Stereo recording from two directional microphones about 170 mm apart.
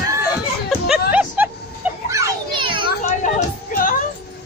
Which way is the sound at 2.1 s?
30° right (ahead or behind).